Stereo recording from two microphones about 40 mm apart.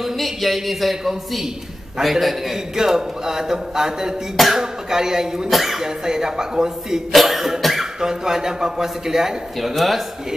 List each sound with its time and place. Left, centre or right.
0.0 s a man's voice: centre
5.5 s speech: centre
5.9 s a man's voice: centre
7.1 s a man's voice: centre
9.6 s speech: centre